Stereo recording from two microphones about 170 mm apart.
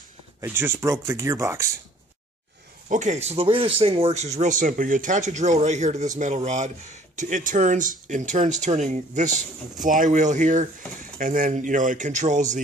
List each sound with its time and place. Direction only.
0.4 s speech: 15° right (ahead or behind)
2.9 s speech: 45° right (ahead or behind)
4.4 s speech: 50° right (ahead or behind)